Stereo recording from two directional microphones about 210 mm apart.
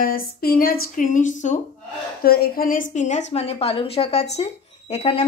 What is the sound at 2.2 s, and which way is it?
A woman's voice, 45° left (ahead or behind).